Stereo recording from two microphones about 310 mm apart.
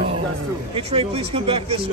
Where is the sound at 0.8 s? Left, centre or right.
Centre.